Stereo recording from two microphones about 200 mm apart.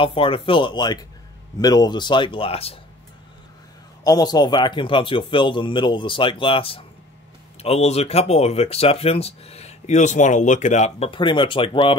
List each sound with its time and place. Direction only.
0.0 s speech: 25° left (ahead or behind)
4.0 s speech: 20° left (ahead or behind)